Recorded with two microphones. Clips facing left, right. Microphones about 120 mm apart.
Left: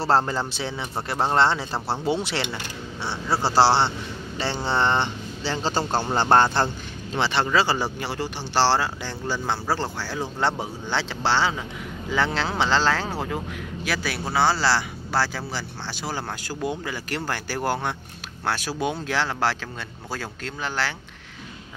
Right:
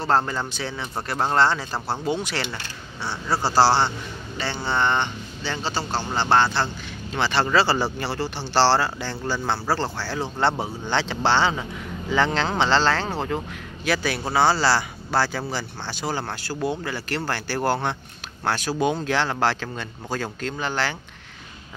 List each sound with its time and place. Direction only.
0.5 s speech: 25° left (ahead or behind); by 5.9 s 45° left (ahead or behind)
5.9 s speech: 20° left (ahead or behind)
6.3 s speech: 45° left (ahead or behind)
7.2 s speech: 25° left (ahead or behind); by 20.9 s 5° left (ahead or behind)